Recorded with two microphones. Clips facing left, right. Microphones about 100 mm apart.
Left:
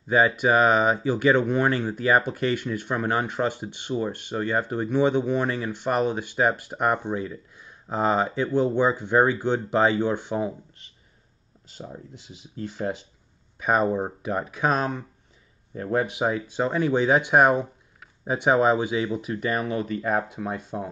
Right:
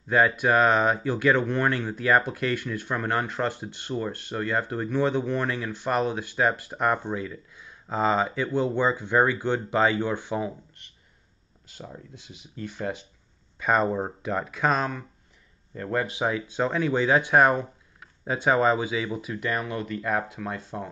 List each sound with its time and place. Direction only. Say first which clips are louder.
0.1 s speech: left 1 dB; 5° left (ahead or behind)
13.6 s speech: left 1 dB; 5° left (ahead or behind)